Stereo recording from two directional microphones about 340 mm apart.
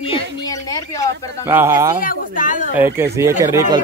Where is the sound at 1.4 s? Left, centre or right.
Centre.